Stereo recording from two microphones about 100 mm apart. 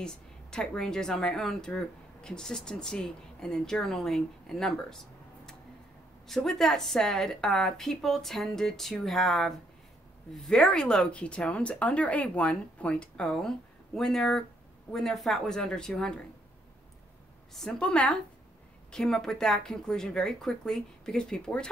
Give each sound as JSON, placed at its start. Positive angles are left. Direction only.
{"t": 0.0, "sound": "speech", "side_deg": 5}
{"t": 17.6, "sound": "speech", "side_deg": 10}